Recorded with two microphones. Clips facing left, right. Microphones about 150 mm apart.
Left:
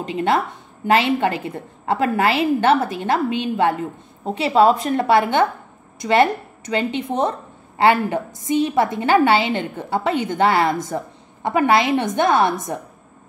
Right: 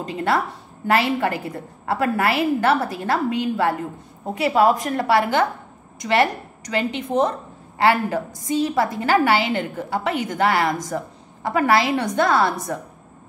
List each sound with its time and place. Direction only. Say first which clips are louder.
0.0 s a woman's voice: left 2 dB; 20° left (ahead or behind)